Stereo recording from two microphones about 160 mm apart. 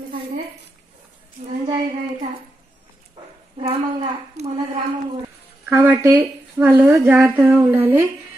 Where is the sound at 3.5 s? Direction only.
40° right (ahead or behind).